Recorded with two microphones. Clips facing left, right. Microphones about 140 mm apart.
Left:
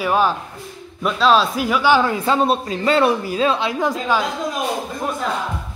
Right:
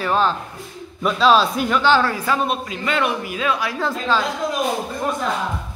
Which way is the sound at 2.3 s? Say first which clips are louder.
Left 4 dB; 35° left (ahead or behind).